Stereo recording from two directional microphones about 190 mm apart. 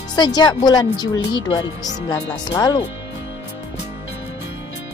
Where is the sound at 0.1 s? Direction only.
20° left (ahead or behind).